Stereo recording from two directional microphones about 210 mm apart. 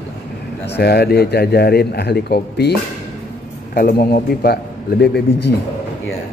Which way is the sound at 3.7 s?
45° left (ahead or behind).